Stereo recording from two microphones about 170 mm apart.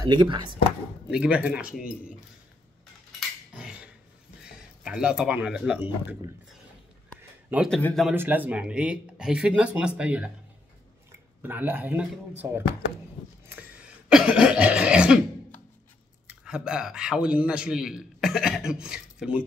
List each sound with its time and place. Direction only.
0.0 s speech: 30° right (ahead or behind)
1.1 s speech: 5° right (ahead or behind)
3.2 s a sound: 5° right (ahead or behind)
4.5 s speech: 5° right (ahead or behind)
7.4 s a man's voice: 10° right (ahead or behind)
7.7 s speech: 5° left (ahead or behind)
8.1 s speech: 10° right (ahead or behind)
13.5 s cough: 10° right (ahead or behind)
16.3 s a man's voice: 5° right (ahead or behind)